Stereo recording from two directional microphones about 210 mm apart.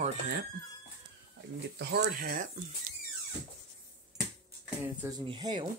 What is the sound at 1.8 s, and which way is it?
Speech, 50° right (ahead or behind).